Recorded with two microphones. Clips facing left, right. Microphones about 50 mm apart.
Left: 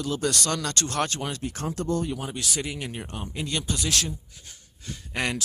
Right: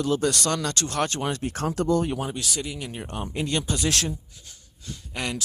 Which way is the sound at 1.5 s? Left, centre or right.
Right.